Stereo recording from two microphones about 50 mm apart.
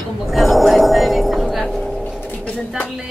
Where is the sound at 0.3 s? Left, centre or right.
Centre.